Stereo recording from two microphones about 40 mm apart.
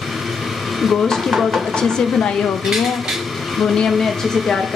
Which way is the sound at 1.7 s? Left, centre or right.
Centre.